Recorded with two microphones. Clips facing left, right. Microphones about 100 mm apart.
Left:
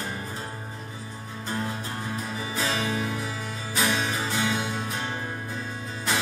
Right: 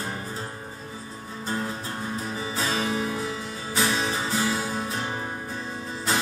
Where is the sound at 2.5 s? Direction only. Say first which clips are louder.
Right 1 dB; 30° right (ahead or behind).